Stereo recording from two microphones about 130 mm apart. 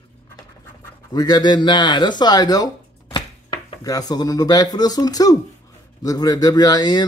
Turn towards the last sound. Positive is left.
turn(degrees=30)  # may be behind; listen again after turning